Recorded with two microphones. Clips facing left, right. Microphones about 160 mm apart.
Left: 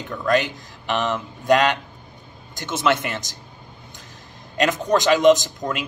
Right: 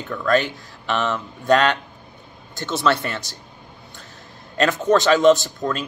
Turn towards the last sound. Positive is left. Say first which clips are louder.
# right 2 dB
turn(degrees=15)  # may be behind; listen again after turning